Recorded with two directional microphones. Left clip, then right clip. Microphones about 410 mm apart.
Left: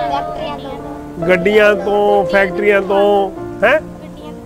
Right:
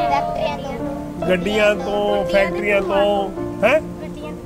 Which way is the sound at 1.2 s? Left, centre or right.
Left.